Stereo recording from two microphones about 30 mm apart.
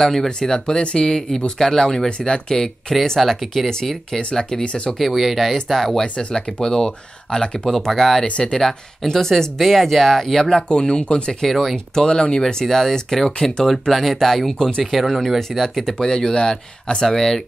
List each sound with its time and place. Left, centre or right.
0.0 s speech: centre
0.4 s speech: left
1.6 s speech: centre
2.0 s speech: left
2.5 s speech: centre
4.2 s speech: left
5.1 s speech: centre
6.3 s speech: centre
10.7 s speech: left
11.4 s speech: centre
12.1 s speech: left
12.6 s speech: centre
14.8 s speech: centre